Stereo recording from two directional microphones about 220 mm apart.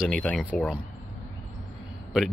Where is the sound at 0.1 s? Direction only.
Centre (ahead or behind).